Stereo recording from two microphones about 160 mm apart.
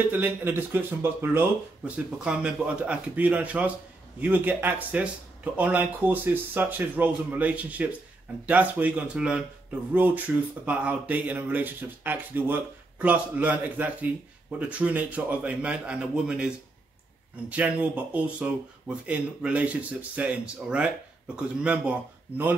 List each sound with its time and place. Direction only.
0.1 s speech: 15° right (ahead or behind)